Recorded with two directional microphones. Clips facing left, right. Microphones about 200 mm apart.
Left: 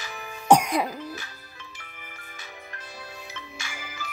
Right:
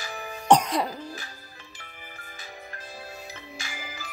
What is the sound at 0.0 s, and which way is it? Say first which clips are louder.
Music: right 2 dB; 35° right (ahead or behind).